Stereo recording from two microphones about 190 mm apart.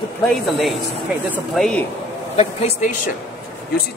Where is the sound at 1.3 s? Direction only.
Centre (ahead or behind).